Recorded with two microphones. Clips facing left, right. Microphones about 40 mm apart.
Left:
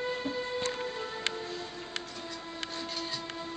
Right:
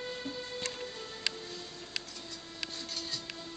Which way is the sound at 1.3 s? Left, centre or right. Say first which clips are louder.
Left 6 dB; centre.